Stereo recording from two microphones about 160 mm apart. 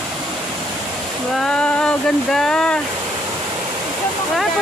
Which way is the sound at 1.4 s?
5° left (ahead or behind).